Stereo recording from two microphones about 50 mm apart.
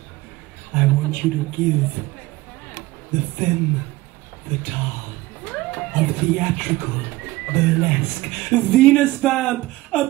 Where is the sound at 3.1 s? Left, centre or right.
Centre.